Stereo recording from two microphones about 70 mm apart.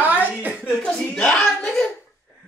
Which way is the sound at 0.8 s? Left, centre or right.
Centre.